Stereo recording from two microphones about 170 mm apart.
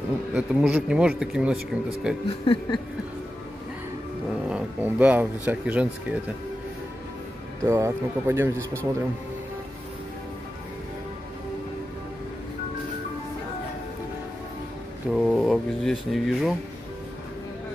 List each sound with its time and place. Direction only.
0.3 s speech: 5° right (ahead or behind)
2.2 s a sound: 30° left (ahead or behind)
4.5 s speech: 5° right (ahead or behind)
7.6 s a man's voice: 15° right (ahead or behind)
15.0 s speech: centre (ahead or behind)